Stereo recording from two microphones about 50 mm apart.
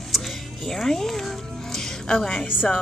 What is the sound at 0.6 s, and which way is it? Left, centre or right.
Speech, centre.